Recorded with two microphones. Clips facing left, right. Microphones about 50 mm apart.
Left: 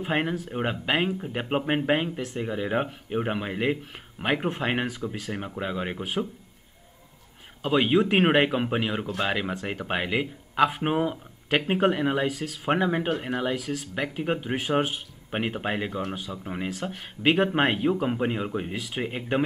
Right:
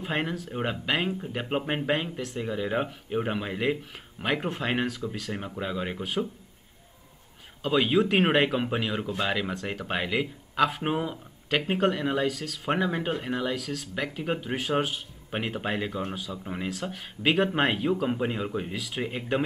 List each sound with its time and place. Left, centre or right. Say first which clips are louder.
0.0 s speech: left 3 dB; centre
7.6 s speech: left 1 dB; centre